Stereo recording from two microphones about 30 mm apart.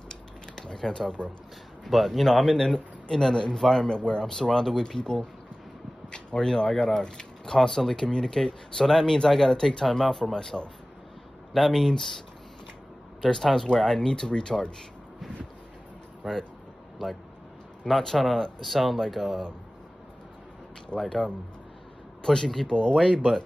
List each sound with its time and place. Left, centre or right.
0.1 s a sound: left
0.8 s speech: left
1.9 s a man's voice: centre
3.9 s speech: left; by 11.9 s centre
13.2 s speech: centre
18.0 s speech: centre
18.6 s a man's voice: centre
20.9 s speech: left
22.2 s speech: left